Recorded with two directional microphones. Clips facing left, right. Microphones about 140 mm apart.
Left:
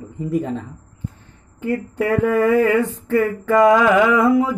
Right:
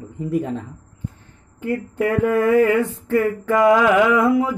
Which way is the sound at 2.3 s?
10° right (ahead or behind).